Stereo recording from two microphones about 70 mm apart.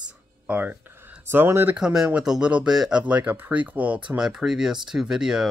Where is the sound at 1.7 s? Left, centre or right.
Centre.